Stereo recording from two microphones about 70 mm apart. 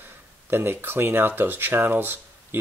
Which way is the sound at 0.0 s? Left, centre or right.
Right.